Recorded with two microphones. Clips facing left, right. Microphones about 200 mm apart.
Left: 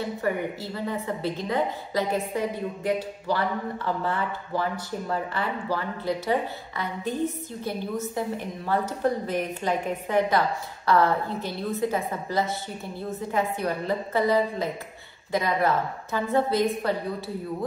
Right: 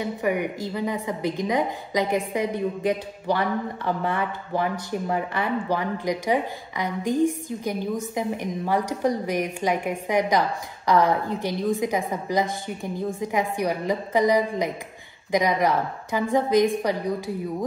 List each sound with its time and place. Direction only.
0.0 s a woman's voice: 15° right (ahead or behind)